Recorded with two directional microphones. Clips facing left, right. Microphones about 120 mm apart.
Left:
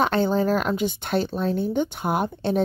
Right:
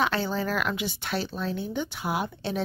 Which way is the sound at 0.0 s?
50° left (ahead or behind).